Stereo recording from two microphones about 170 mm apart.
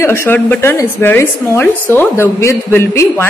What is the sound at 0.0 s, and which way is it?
A woman's voice, 15° left (ahead or behind).